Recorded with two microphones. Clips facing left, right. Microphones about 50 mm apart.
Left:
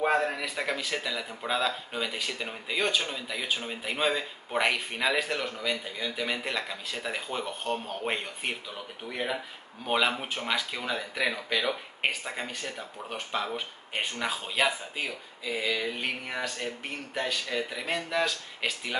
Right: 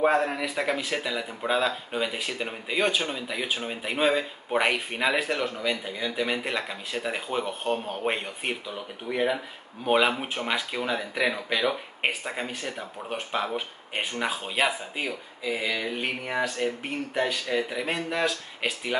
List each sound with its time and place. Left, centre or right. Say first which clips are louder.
0.0 s speech: right 3 dB; centre